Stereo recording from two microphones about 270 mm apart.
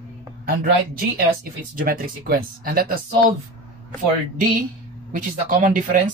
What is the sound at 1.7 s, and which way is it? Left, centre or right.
Speech, right.